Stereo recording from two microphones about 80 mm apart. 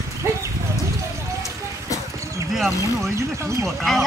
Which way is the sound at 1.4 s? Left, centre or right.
Left.